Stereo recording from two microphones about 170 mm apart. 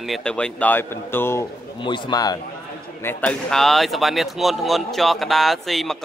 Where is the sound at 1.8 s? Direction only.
25° left (ahead or behind).